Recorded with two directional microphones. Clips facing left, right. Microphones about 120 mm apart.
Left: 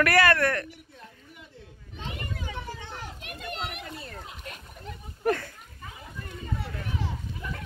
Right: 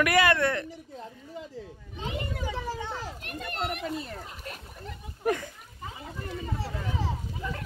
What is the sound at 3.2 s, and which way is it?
Children playing, centre (ahead or behind).